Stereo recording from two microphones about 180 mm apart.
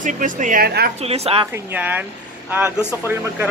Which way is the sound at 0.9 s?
35° right (ahead or behind).